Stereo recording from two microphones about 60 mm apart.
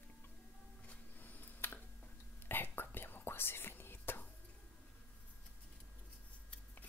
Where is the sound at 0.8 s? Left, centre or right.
Left.